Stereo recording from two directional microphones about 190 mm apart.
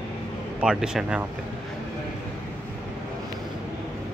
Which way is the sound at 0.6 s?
5° right (ahead or behind).